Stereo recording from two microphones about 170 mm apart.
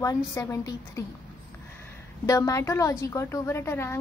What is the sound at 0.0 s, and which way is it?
A woman's voice, 20° left (ahead or behind).